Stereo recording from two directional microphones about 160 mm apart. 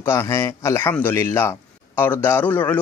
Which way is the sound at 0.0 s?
20° left (ahead or behind).